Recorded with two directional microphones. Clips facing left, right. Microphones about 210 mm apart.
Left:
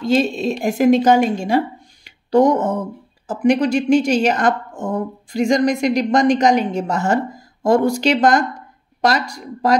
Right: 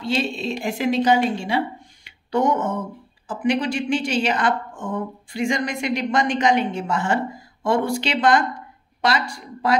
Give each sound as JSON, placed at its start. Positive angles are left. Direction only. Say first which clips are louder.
{"t": 0.0, "sound": "a woman's voice", "louder": "left 7 dB", "side_deg": 40}
{"t": 2.0, "sound": "a sound", "louder": "left 7 dB", "side_deg": 40}
{"t": 3.3, "sound": "a woman's voice", "louder": "left 6 dB", "side_deg": 40}